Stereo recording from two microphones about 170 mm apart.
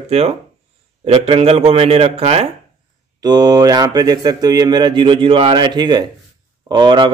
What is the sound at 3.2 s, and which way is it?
A man's voice, 25° right (ahead or behind).